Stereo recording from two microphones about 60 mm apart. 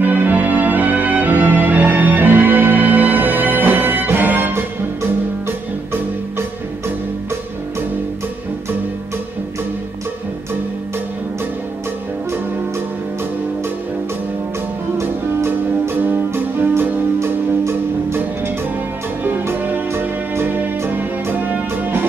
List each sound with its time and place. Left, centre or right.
0.0 s music: right
15.0 s music: right
17.2 s music: right